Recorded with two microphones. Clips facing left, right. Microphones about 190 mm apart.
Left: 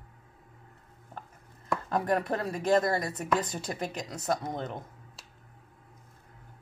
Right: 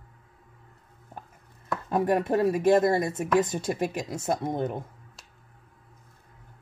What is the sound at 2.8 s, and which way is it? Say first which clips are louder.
Speech: right 6 dB; 25° right (ahead or behind).